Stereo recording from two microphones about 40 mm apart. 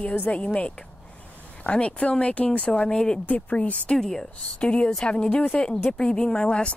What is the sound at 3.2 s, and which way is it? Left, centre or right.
Speech, left.